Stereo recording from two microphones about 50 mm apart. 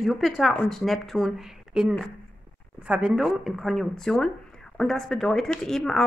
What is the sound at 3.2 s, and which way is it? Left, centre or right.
Speech, centre.